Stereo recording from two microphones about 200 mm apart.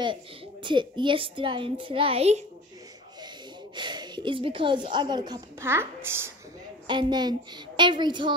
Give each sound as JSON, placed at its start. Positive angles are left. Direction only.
{"t": 0.0, "sound": "a woman's voice", "side_deg": -25}
{"t": 3.7, "sound": "a woman's voice", "side_deg": -20}
{"t": 6.9, "sound": "a woman's voice", "side_deg": -20}